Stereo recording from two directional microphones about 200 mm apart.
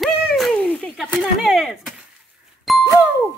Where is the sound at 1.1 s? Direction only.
Centre (ahead or behind).